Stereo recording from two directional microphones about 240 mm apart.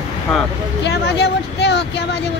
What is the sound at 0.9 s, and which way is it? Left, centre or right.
Speech, left.